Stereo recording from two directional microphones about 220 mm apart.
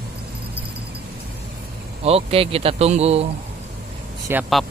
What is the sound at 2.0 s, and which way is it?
Speech, 25° right (ahead or behind).